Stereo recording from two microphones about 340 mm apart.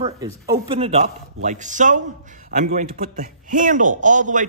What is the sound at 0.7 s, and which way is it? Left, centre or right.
A man's voice, centre.